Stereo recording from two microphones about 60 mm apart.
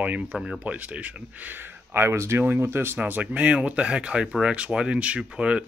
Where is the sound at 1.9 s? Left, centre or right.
Right.